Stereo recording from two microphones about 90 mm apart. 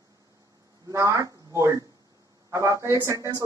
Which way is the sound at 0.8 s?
35° right (ahead or behind).